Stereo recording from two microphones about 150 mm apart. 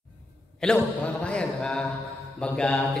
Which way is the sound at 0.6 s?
5° left (ahead or behind).